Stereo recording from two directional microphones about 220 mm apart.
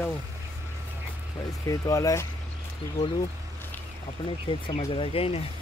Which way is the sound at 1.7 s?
15° left (ahead or behind).